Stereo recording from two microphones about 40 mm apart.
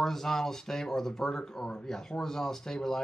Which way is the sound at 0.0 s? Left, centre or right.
Centre.